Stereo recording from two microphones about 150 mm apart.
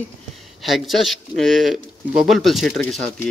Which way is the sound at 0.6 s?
Centre (ahead or behind).